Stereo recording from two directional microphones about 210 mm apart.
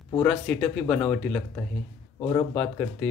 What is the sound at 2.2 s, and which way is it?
Speech, 20° left (ahead or behind).